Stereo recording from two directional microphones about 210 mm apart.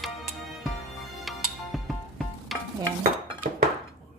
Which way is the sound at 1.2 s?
Centre (ahead or behind).